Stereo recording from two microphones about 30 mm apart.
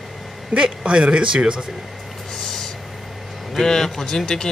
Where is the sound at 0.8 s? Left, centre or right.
Right.